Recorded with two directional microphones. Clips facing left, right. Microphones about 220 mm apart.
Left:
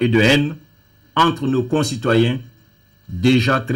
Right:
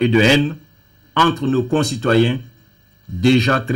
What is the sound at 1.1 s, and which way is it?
A man's voice, centre (ahead or behind).